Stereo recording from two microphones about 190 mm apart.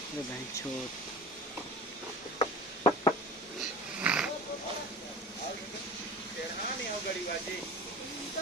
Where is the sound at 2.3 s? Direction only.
25° left (ahead or behind).